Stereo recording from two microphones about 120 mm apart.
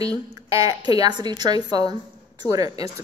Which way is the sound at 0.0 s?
30° right (ahead or behind).